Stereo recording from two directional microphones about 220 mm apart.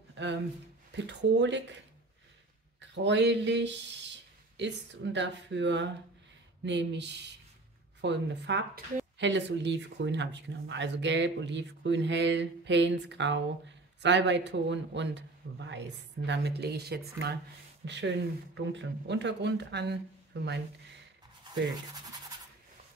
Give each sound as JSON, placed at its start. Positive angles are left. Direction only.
{"t": 0.1, "sound": "a sound", "side_deg": -55}
{"t": 0.9, "sound": "a woman's voice", "side_deg": -55}
{"t": 2.9, "sound": "a woman's voice", "side_deg": -55}